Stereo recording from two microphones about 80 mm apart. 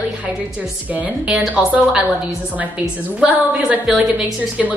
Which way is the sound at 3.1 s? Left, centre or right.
Centre.